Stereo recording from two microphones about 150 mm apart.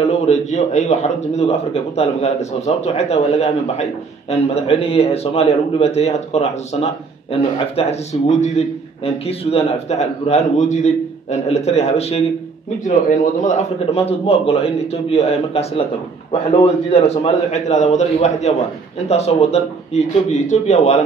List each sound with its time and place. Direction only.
0.3 s a man's voice: 50° left (ahead or behind)
12.8 s a man's voice: 55° left (ahead or behind)